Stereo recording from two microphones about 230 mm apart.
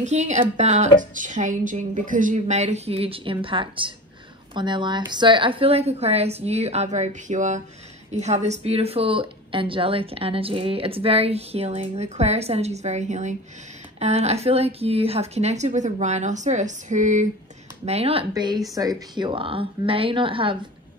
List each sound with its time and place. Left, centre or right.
0.0 s a woman's voice: right